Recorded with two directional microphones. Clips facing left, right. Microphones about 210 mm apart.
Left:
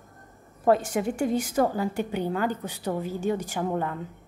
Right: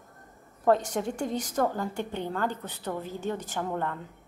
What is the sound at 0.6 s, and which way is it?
A woman's voice, 10° left (ahead or behind).